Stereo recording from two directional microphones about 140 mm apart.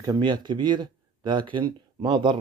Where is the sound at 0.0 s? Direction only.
30° right (ahead or behind).